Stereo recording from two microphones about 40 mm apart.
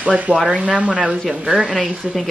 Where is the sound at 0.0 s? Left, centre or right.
Right.